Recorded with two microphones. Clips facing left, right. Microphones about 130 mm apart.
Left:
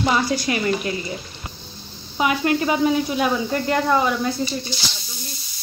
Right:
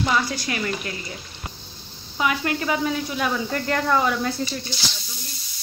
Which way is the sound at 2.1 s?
20° left (ahead or behind).